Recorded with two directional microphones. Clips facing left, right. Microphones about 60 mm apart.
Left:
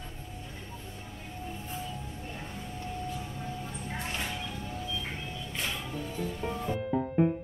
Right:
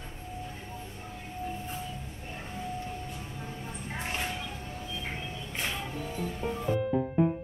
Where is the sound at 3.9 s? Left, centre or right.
Centre.